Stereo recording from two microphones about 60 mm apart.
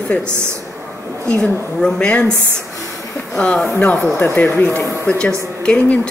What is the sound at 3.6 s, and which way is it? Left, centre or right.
A woman's voice, left.